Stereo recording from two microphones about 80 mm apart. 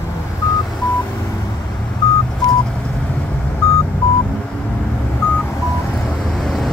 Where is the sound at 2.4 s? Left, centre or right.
Left.